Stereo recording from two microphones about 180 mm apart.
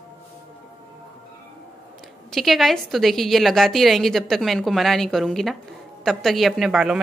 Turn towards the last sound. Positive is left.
turn(degrees=0)  # may be behind; listen again after turning